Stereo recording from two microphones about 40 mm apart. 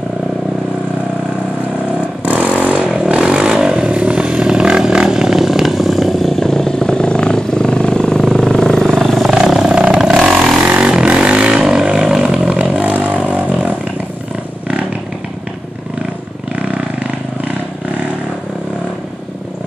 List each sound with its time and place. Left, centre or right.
2.2 s vehicle: right
3.0 s vehicle: right; by 6.4 s centre
6.4 s vehicle: centre
8.8 s vehicle: centre
9.8 s vehicle: centre
10.8 s vehicle: right
12.4 s a sound: right